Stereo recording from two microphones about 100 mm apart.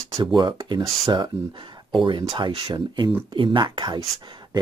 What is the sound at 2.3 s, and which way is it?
Speech, 50° right (ahead or behind).